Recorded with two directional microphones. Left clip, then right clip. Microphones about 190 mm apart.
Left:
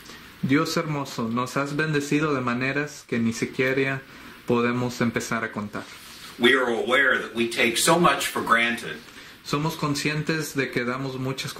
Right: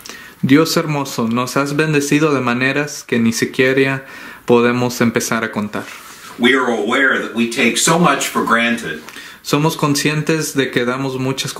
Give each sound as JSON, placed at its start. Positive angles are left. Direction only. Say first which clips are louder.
{"t": 0.5, "sound": "speech", "louder": "right 10 dB", "side_deg": -30}
{"t": 6.4, "sound": "speech", "louder": "right 6 dB", "side_deg": 0}
{"t": 9.5, "sound": "speech", "louder": "right 11 dB", "side_deg": -30}